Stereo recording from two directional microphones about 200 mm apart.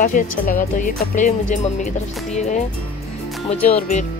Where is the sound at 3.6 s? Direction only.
35° left (ahead or behind).